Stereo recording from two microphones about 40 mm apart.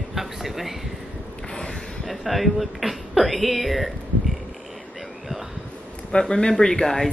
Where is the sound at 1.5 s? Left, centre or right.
Centre.